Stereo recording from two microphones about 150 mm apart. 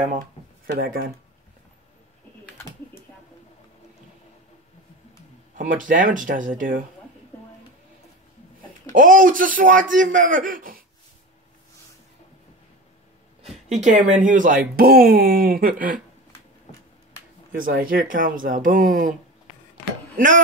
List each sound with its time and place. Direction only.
0.7 s speech: 85° right
5.6 s a man's voice: 60° right (ahead or behind)
8.9 s a man's voice: 65° right (ahead or behind)
13.8 s speech: 55° right (ahead or behind)
17.5 s a man's voice: 70° right (ahead or behind)
20.2 s a man's voice: 60° right (ahead or behind)